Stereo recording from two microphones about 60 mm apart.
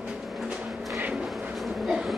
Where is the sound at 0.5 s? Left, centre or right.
Centre.